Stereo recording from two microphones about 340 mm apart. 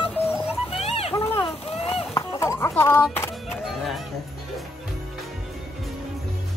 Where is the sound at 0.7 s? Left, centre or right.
Centre.